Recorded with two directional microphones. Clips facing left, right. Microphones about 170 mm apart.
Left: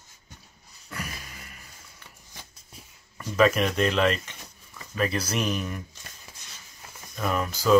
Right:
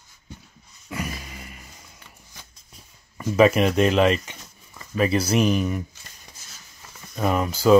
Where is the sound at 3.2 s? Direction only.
10° right (ahead or behind).